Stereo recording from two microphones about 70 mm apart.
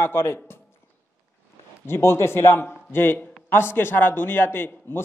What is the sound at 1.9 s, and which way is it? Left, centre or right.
A man's voice, left.